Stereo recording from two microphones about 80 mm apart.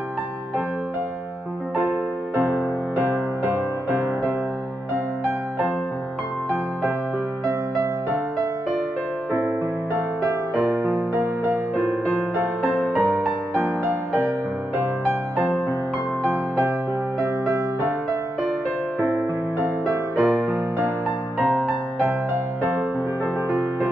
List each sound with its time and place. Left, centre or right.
2.3 s music: right
7.4 s music: right
12.9 s music: centre
19.0 s music: right
20.2 s music: centre